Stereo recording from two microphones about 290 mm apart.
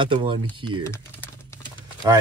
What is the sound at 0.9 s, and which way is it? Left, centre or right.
Typing, centre.